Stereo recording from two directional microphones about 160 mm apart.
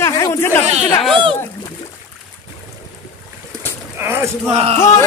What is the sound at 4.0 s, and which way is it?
Boat, 15° right (ahead or behind).